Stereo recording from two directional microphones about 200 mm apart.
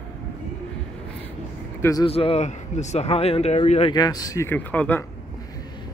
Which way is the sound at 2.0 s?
30° left (ahead or behind).